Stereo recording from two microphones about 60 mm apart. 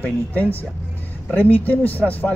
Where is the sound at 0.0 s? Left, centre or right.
Left.